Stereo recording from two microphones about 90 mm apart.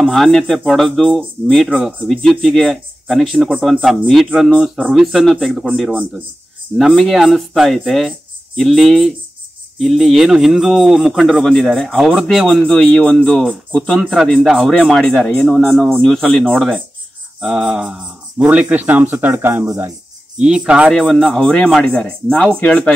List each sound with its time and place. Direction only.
0.0 s speech: centre (ahead or behind)
3.4 s speech: 10° right (ahead or behind)
3.8 s speech: centre (ahead or behind)
17.4 s speech: 5° right (ahead or behind); by 19.9 s 25° right (ahead or behind)
20.3 s speech: 10° right (ahead or behind)
20.9 s speech: centre (ahead or behind)